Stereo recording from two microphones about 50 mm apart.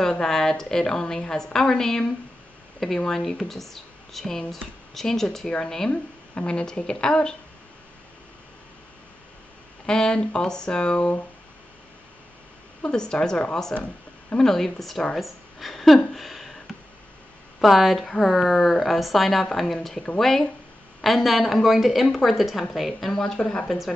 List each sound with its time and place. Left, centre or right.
0.0 s speech: centre
5.9 s speech: left
9.8 s speech: centre
12.8 s a woman's voice: centre
16.1 s a sound: centre
17.6 s speech: centre